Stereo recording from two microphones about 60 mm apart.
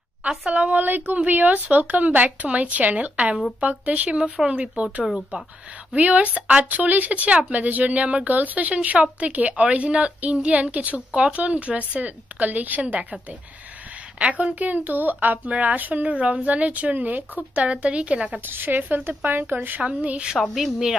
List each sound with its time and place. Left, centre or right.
0.5 s speech: right
5.9 s speech: right
18.4 s speech: right
19.8 s speech: centre
20.4 s speech: centre